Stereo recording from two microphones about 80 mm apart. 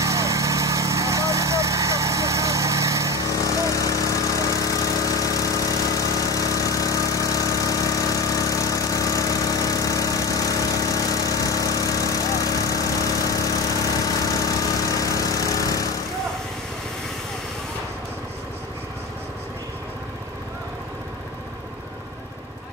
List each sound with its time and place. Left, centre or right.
0.0 s vehicle: right
3.3 s lawn mower: left
14.0 s vehicle: left